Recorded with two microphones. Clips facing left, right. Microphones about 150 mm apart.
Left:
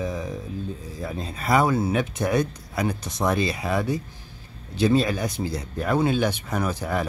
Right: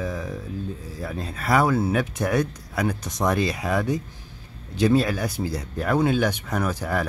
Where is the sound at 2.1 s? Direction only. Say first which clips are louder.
Even; 10° right (ahead or behind).